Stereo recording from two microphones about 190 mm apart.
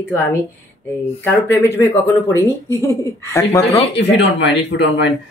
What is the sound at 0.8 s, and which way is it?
Speech, 10° left (ahead or behind).